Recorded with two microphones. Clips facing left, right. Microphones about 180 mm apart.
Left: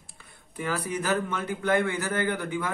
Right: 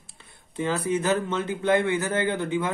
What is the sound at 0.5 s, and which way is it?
A man's voice, 25° right (ahead or behind).